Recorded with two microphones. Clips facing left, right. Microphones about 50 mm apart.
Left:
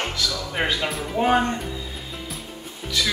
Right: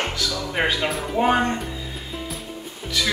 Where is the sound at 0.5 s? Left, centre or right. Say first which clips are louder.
Right 3 dB; centre.